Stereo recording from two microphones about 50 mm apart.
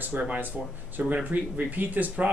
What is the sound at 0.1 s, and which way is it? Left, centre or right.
Speech, right.